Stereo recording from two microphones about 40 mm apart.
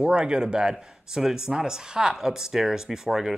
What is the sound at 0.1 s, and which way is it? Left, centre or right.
Speech, centre.